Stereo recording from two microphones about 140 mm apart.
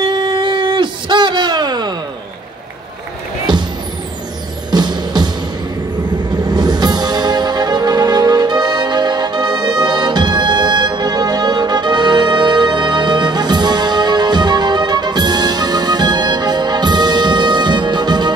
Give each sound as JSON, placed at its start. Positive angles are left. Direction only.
{"t": 0.0, "sound": "a sound", "side_deg": -35}
{"t": 4.6, "sound": "music", "side_deg": -30}
{"t": 6.4, "sound": "music", "side_deg": -30}